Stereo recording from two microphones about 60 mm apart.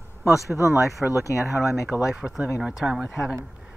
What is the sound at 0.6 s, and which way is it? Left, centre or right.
Speech, left.